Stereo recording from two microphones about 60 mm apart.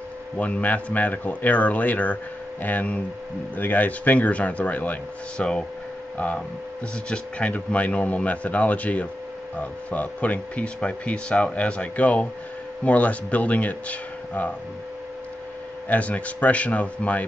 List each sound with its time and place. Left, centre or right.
0.4 s speech: left
15.9 s speech: left